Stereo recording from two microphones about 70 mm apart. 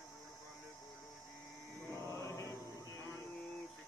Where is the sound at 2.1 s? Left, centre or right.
Left.